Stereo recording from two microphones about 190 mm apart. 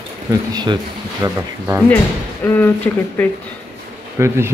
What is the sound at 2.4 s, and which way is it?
Speech, 10° left (ahead or behind).